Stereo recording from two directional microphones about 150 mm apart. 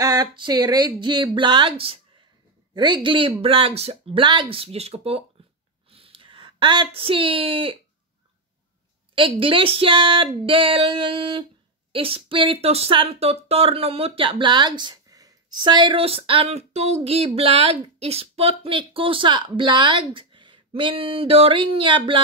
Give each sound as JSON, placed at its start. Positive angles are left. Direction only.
{"t": 0.0, "sound": "speech", "side_deg": -25}
{"t": 5.9, "sound": "a sound", "side_deg": -40}
{"t": 9.1, "sound": "speech", "side_deg": -35}